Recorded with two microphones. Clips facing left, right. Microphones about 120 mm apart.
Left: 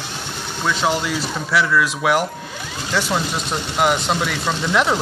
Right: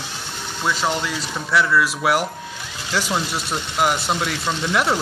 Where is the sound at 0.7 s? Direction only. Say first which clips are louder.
Left 2 dB; centre (ahead or behind).